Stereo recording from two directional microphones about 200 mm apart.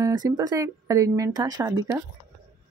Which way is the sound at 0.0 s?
20° right (ahead or behind).